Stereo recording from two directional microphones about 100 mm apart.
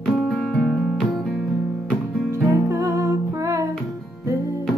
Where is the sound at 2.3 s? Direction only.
30° right (ahead or behind).